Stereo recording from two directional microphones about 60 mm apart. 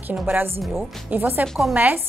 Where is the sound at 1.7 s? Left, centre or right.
Right.